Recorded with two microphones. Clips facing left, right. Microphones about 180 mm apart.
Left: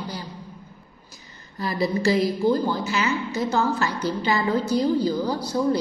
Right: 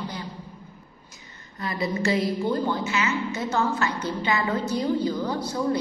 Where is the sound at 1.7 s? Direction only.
35° left (ahead or behind).